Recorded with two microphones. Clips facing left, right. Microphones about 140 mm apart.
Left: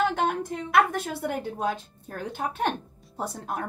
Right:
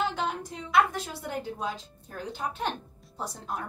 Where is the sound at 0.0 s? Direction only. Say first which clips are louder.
Left 5 dB; 55° left (ahead or behind).